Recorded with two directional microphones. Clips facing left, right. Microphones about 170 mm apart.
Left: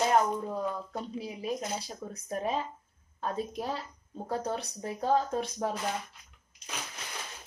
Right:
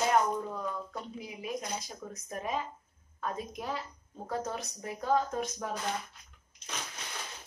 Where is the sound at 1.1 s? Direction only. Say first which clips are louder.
Left 4 dB; 30° left (ahead or behind).